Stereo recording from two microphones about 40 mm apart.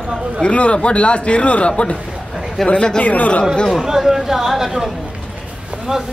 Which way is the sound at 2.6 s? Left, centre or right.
Centre.